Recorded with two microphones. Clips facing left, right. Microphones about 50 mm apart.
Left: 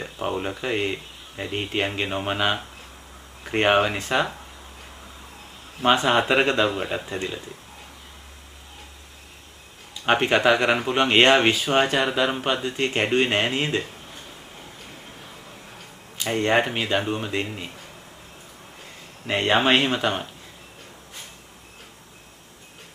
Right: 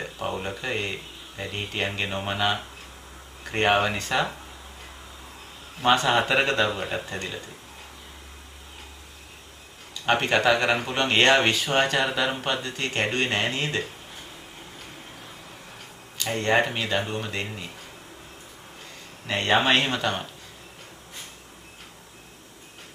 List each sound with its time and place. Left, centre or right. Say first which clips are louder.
0.0 s speech: left 3 dB; centre
6.2 s speech: left 2 dB; centre
10.0 s speech: left 2 dB; centre
16.2 s speech: left 2 dB; left
19.2 s speech: left 2 dB; centre